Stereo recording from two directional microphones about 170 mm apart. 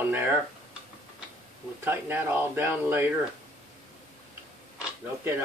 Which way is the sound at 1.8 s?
10° right (ahead or behind).